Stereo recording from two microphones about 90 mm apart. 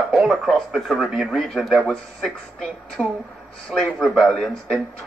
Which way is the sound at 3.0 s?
5° right (ahead or behind).